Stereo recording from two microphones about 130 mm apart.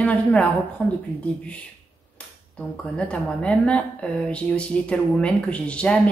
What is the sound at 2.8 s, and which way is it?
A woman's voice, 10° left (ahead or behind).